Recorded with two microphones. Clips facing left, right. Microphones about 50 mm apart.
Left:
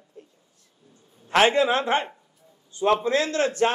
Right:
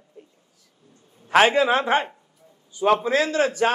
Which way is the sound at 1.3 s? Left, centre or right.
Centre.